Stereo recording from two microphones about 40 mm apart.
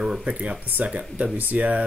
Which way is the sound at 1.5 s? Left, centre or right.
Right.